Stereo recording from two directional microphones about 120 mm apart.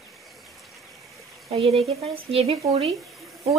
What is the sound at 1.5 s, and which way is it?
Speech, 55° right (ahead or behind).